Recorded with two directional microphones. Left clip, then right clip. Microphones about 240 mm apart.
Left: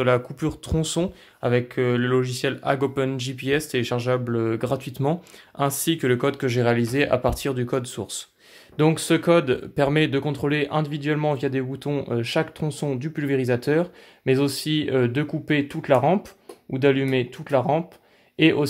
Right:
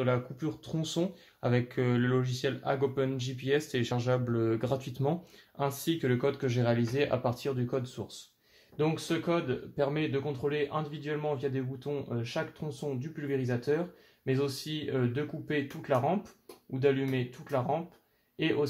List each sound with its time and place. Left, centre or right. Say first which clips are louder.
0.0 s speech: left 10 dB; left